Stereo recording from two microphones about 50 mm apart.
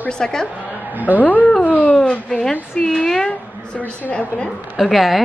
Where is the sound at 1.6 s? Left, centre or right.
Left.